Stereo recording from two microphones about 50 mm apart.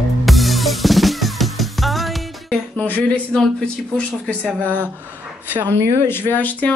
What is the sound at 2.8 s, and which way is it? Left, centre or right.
Speech, left.